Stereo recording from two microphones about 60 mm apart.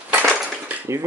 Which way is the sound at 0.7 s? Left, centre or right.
Right.